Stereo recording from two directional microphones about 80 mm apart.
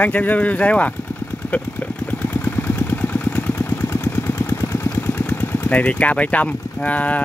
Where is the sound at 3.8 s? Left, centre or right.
Left.